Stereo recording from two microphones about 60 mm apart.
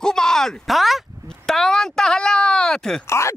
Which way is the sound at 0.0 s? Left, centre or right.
Centre.